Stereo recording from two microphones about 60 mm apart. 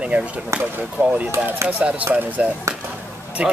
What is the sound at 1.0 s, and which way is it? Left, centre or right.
Speech, right.